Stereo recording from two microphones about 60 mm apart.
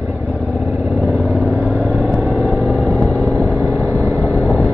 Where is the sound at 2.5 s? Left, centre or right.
Left.